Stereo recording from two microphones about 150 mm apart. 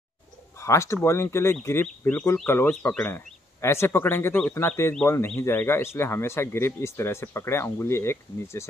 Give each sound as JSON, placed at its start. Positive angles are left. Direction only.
{"t": 0.6, "sound": "speech", "side_deg": 20}